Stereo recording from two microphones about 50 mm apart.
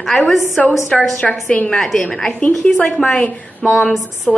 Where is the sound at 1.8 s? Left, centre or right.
Centre.